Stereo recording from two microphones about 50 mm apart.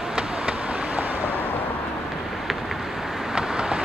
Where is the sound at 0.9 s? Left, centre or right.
Right.